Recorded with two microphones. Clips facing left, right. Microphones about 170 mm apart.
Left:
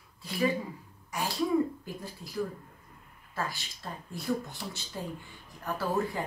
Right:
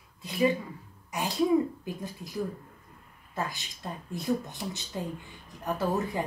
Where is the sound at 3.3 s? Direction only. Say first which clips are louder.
Right 2 dB; 20° right (ahead or behind).